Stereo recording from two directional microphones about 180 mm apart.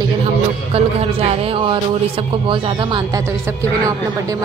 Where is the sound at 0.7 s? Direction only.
35° right (ahead or behind).